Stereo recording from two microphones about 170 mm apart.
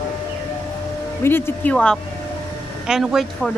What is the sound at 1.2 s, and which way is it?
Speech, 15° left (ahead or behind).